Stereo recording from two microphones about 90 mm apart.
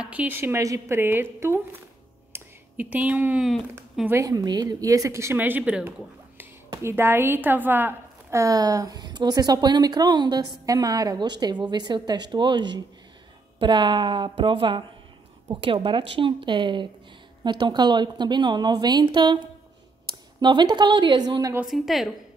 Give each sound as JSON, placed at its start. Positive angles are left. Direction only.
{"t": 0.0, "sound": "a sound", "side_deg": -15}
{"t": 0.4, "sound": "a woman's voice", "side_deg": -30}
{"t": 2.3, "sound": "a sound", "side_deg": -20}
{"t": 4.1, "sound": "a woman's voice", "side_deg": -40}
{"t": 5.4, "sound": "a woman's voice", "side_deg": -15}
{"t": 6.7, "sound": "a woman's voice", "side_deg": -30}
{"t": 8.4, "sound": "a woman's voice", "side_deg": -40}
{"t": 15.6, "sound": "speech", "side_deg": -75}
{"t": 21.6, "sound": "a woman's voice", "side_deg": 0}